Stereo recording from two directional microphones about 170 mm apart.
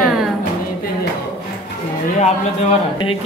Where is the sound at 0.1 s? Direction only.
Centre (ahead or behind).